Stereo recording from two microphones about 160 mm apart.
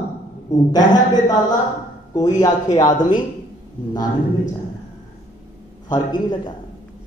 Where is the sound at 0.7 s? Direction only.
25° left (ahead or behind).